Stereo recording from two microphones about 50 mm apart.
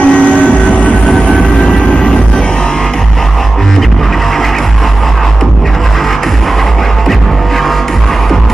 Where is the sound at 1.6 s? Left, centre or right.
Centre.